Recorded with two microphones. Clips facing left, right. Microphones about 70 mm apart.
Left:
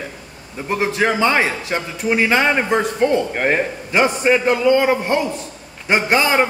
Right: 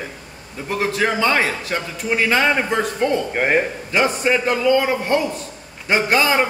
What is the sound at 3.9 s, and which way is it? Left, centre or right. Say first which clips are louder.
A man's voice: left 5 dB; left.